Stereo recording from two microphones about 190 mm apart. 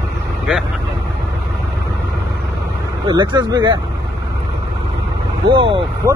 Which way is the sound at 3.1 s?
25° right (ahead or behind).